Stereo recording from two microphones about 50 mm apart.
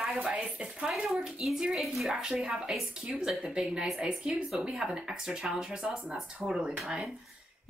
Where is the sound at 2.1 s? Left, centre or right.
Centre.